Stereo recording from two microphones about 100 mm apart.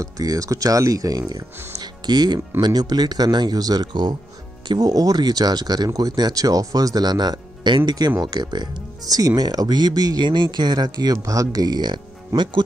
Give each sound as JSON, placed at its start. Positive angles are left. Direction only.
{"t": 0.0, "sound": "speech", "side_deg": -35}
{"t": 1.8, "sound": "music", "side_deg": -45}
{"t": 2.6, "sound": "speech", "side_deg": -40}